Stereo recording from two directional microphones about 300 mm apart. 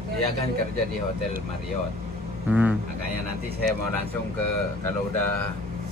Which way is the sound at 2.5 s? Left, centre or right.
Centre.